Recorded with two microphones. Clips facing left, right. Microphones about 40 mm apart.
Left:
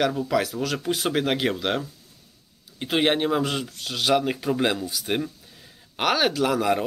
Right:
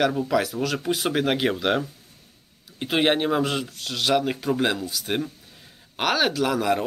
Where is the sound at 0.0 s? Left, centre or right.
Centre.